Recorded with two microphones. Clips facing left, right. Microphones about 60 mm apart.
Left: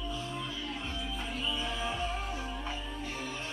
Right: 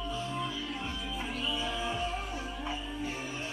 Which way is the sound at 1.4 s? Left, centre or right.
Centre.